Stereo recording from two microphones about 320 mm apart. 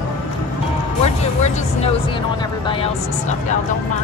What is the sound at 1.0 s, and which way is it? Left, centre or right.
Music, centre.